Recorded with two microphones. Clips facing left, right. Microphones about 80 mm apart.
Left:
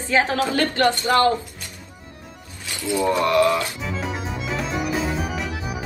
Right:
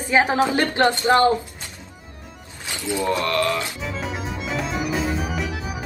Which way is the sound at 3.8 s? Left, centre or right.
Centre.